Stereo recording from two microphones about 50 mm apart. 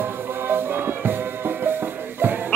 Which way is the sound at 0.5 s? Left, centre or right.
Right.